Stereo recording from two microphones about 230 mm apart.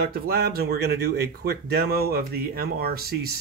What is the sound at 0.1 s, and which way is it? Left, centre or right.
Speech, right.